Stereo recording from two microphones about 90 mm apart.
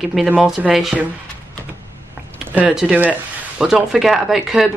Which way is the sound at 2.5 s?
15° right (ahead or behind).